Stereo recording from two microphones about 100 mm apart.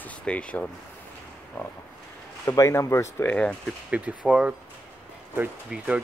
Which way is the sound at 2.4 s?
30° left (ahead or behind).